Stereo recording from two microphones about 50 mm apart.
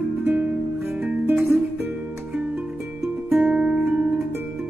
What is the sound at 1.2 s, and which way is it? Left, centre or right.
Music, right.